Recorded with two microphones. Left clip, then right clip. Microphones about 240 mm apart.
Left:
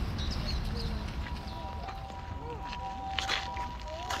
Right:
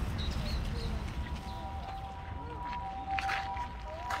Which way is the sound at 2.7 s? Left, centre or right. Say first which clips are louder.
Right 1 dB; left.